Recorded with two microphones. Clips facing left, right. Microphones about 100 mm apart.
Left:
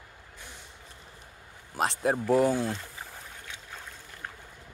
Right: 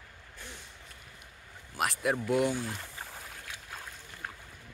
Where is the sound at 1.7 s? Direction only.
30° left (ahead or behind).